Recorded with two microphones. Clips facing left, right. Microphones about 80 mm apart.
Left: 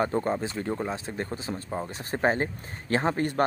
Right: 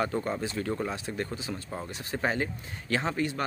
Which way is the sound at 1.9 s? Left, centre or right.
Left.